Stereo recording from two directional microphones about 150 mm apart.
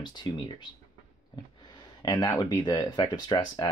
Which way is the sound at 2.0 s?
20° left (ahead or behind).